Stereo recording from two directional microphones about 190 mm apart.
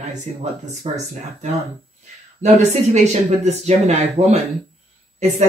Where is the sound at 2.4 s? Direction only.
35° right (ahead or behind).